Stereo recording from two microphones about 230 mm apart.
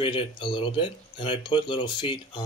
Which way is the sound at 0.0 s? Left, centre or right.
Left.